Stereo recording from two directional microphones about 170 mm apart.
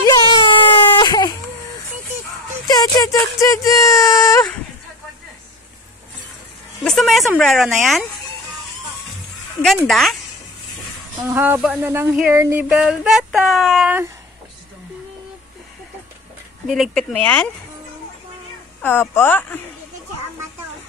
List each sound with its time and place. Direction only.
0.0 s baby cry: 25° left (ahead or behind)
2.7 s speech: 20° left (ahead or behind)
6.8 s speech: centre (ahead or behind)
9.8 s music: centre (ahead or behind)
11.3 s speech: 10° right (ahead or behind)
12.3 s music: 15° right (ahead or behind)
16.6 s music: centre (ahead or behind)
18.8 s speech: 15° left (ahead or behind)